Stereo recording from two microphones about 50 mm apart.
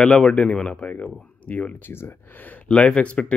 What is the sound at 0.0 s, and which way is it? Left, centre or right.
Speech, centre.